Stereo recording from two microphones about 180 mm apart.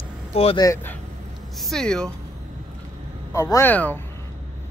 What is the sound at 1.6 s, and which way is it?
Speech, 5° left (ahead or behind).